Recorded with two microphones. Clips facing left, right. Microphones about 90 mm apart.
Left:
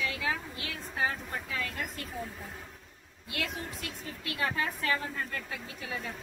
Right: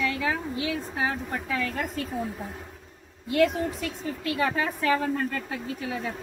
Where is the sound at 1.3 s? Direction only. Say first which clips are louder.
Right 7 dB; 55° right (ahead or behind).